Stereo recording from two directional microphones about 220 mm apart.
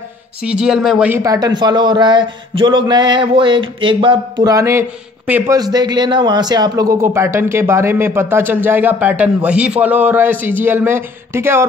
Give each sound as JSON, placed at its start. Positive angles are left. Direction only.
{"t": 0.4, "sound": "speech", "side_deg": -5}